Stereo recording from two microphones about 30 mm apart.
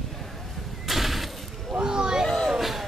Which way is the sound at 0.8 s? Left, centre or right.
Centre.